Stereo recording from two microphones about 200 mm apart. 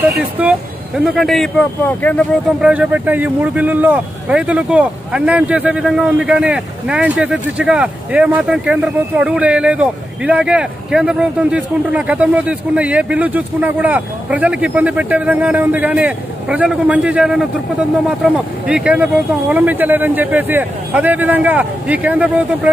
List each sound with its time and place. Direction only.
0.2 s speech: 5° right (ahead or behind); by 2.2 s 10° left (ahead or behind)
2.6 s speech: 5° right (ahead or behind)